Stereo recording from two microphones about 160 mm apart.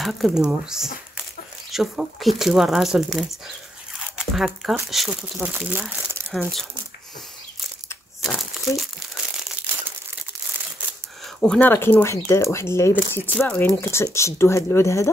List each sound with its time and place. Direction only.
0.0 s speech: centre (ahead or behind)
8.2 s crumpling: centre (ahead or behind)
11.4 s speech: 10° left (ahead or behind)